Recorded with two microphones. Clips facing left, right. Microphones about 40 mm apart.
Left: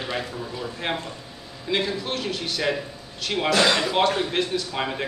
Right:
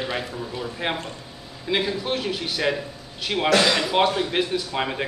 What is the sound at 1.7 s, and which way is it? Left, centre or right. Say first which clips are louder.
Speech: right 2 dB; centre.